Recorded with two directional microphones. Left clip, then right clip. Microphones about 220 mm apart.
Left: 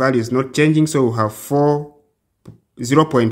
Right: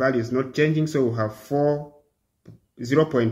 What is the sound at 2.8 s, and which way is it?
Speech, 50° left (ahead or behind).